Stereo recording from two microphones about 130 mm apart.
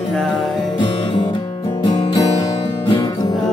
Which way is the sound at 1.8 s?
35° left (ahead or behind).